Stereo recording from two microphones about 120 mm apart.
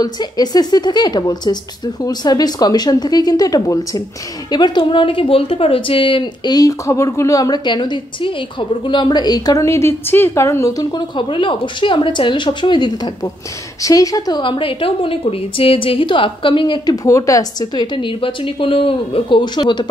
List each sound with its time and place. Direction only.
0.0 s a woman's voice: 35° left (ahead or behind)